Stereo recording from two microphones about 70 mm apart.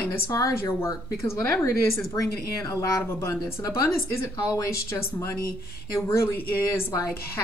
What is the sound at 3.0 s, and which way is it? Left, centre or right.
Speech, left.